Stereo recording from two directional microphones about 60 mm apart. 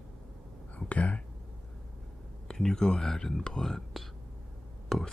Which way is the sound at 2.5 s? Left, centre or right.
Centre.